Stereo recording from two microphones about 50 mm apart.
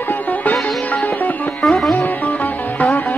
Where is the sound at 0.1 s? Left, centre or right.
Left.